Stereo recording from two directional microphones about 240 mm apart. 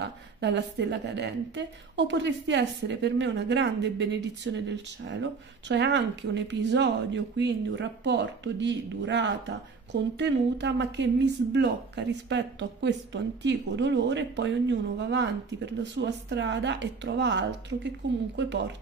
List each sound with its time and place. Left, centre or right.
0.0 s speech: right